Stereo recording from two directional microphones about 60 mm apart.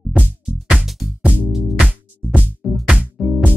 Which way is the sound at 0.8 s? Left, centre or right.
Centre.